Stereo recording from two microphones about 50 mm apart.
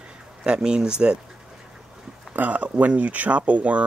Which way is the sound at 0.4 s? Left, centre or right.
Centre.